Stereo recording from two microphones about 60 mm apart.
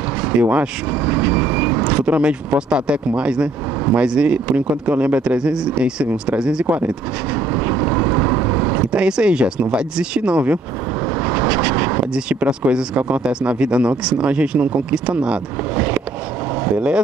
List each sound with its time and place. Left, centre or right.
0.2 s vehicle: right
1.9 s speech: centre
6.6 s speech: right
7.3 s vehicle: right
8.9 s speech: centre
11.1 s vehicle: right
11.4 s vehicle: right
12.1 s speech: centre
15.7 s a sound: right